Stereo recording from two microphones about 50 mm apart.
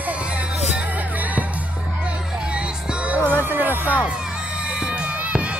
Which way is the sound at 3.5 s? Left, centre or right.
Right.